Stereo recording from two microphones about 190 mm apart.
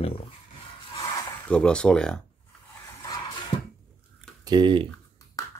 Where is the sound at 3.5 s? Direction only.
30° left (ahead or behind).